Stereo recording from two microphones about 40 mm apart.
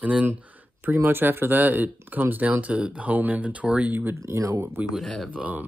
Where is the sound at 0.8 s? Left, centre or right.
Right.